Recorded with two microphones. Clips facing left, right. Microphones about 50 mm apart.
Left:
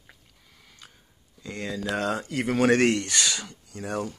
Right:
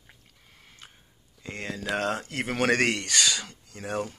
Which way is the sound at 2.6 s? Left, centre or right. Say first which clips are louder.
Left 3 dB; right.